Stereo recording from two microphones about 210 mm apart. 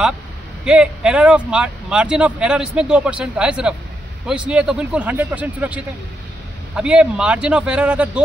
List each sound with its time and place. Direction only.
0.7 s speech: 5° right (ahead or behind)